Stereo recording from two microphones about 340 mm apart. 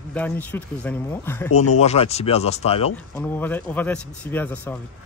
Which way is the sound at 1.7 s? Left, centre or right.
Centre.